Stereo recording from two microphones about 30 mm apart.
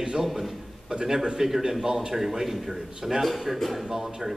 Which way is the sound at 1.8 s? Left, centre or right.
Right.